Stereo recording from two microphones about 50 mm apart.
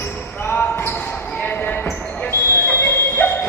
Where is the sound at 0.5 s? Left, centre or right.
Left.